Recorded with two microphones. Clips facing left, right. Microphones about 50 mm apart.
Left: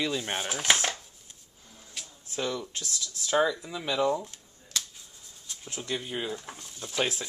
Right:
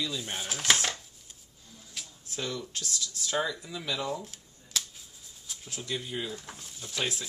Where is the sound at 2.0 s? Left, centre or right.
Centre.